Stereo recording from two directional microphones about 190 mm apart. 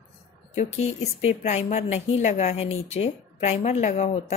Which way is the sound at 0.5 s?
35° left (ahead or behind).